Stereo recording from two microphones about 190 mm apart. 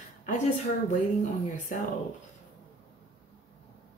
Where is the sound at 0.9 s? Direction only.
40° left (ahead or behind).